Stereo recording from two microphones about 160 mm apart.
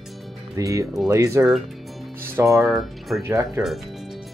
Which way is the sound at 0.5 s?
20° right (ahead or behind).